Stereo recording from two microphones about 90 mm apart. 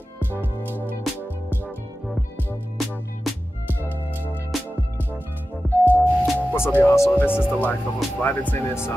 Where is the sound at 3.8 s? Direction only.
20° left (ahead or behind).